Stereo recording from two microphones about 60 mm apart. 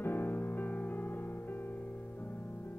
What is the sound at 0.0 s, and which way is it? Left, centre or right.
Music, left.